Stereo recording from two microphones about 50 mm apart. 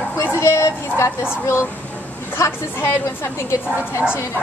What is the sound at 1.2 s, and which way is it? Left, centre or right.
Speech, left.